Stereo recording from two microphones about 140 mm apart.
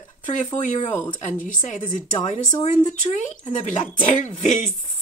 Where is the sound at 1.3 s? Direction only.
65° left (ahead or behind).